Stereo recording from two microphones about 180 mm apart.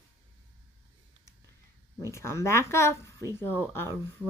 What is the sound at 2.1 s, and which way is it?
Speech, 15° left (ahead or behind).